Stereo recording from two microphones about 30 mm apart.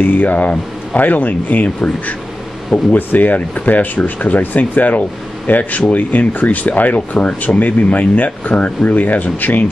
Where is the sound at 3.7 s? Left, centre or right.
Left.